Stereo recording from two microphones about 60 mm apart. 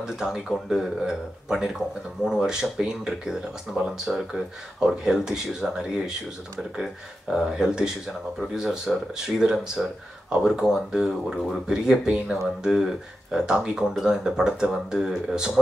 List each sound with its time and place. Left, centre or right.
0.0 s speech: centre
3.7 s speech: centre
4.0 s speech: centre